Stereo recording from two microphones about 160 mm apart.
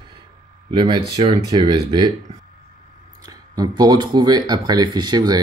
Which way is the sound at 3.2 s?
25° right (ahead or behind).